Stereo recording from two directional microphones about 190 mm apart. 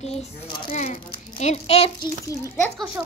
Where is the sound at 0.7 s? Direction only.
35° left (ahead or behind).